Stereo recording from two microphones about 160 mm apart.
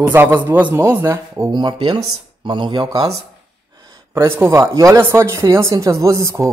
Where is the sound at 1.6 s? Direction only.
30° right (ahead or behind).